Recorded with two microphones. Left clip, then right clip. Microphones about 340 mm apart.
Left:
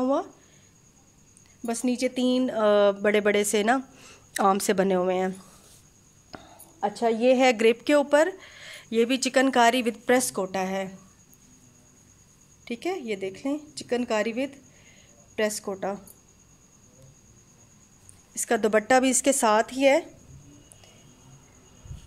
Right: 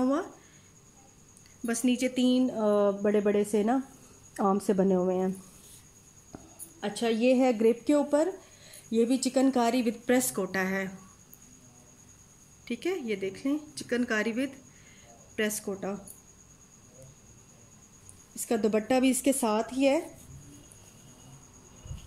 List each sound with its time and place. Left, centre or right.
0.0 s a sound: centre
1.7 s a woman's voice: centre
2.6 s a woman's voice: left
6.8 s speech: centre
12.6 s a woman's voice: centre
18.3 s speech: left